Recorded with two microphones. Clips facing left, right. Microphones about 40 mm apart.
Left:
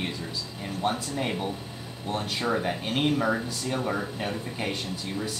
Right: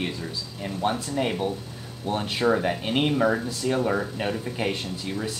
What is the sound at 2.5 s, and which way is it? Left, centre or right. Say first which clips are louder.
Speech: right 2 dB; centre.